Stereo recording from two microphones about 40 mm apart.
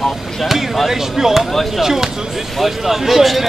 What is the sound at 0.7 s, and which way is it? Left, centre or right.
Speech, centre.